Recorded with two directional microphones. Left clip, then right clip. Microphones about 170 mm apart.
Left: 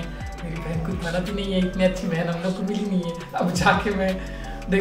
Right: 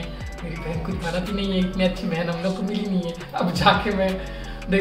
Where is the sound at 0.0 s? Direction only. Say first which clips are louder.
Even; centre (ahead or behind).